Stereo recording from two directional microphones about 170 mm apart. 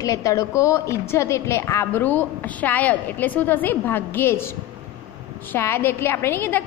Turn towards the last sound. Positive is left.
turn(degrees=15)  # may be behind; listen again after turning